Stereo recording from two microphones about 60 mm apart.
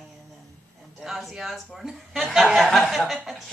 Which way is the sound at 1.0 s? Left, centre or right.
Centre.